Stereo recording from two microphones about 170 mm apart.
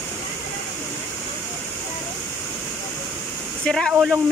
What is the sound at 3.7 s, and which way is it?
Speech, centre (ahead or behind).